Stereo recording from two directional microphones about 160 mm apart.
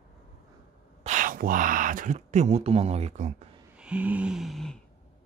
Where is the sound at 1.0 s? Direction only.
55° right (ahead or behind).